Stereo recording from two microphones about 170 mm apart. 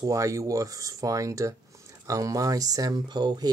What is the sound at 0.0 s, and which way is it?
Speech, 20° right (ahead or behind).